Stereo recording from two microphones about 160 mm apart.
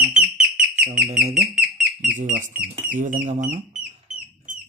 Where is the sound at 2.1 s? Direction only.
50° right (ahead or behind).